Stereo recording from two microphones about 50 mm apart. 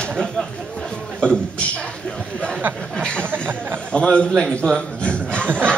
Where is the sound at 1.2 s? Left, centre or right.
Centre.